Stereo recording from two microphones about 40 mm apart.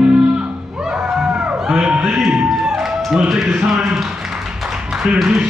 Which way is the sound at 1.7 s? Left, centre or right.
Centre.